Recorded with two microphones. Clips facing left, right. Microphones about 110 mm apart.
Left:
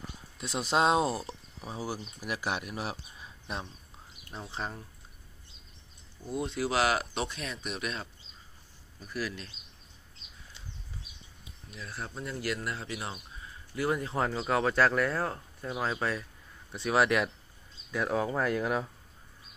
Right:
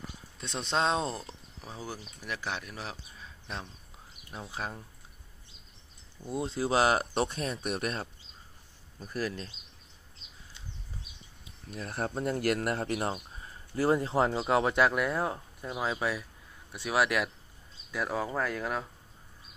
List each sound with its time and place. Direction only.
0.4 s speech: 5° left (ahead or behind)
4.3 s speech: 5° right (ahead or behind)
6.2 s speech: 30° right (ahead or behind)
6.9 s speech: 40° right (ahead or behind)
7.6 s speech: 55° right (ahead or behind)
9.0 s speech: 35° right (ahead or behind)
11.7 s speech: 50° right (ahead or behind)
13.1 s speech: 35° right (ahead or behind); by 18.9 s 5° left (ahead or behind)